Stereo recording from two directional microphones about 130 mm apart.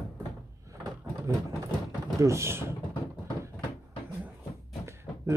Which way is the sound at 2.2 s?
20° right (ahead or behind).